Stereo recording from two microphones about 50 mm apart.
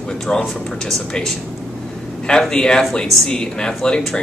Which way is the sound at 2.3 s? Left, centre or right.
Centre.